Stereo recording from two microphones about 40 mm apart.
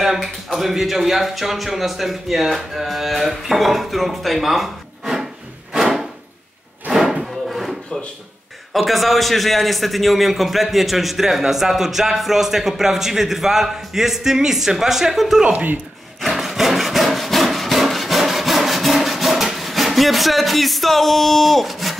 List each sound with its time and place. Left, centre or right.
0.0 s speech: centre
6.9 s a sound: centre
8.7 s a man's voice: centre
15.5 s speech: right
16.2 s wood: centre